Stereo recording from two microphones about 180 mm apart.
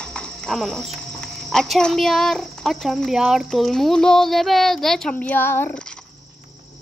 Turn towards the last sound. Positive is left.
turn(degrees=10)  # may be behind; listen again after turning